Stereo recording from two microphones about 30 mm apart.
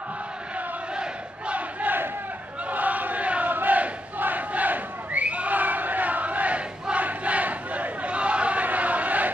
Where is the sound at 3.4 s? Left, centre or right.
Right.